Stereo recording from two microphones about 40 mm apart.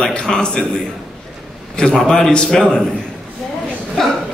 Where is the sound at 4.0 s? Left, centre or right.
Centre.